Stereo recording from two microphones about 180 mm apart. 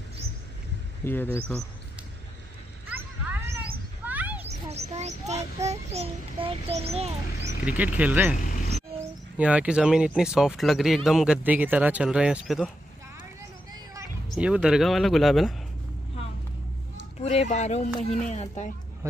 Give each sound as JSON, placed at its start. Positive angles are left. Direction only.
{"t": 1.0, "sound": "speech", "side_deg": 10}
{"t": 4.0, "sound": "children playing", "side_deg": -10}
{"t": 4.5, "sound": "a child's voice", "side_deg": -35}
{"t": 7.6, "sound": "speech", "side_deg": -10}
{"t": 9.4, "sound": "speech", "side_deg": -5}
{"t": 14.3, "sound": "speech", "side_deg": -5}
{"t": 17.2, "sound": "speech", "side_deg": 35}